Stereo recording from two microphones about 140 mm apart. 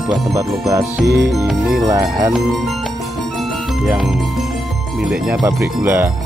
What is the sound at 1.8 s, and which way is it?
Speech, 25° right (ahead or behind).